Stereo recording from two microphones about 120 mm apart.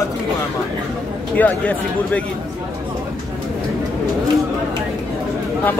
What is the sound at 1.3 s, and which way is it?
Speech, 10° left (ahead or behind).